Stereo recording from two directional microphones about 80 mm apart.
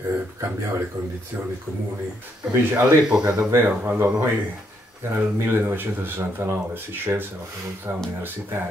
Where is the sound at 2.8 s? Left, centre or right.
Centre; by 8.6 s right.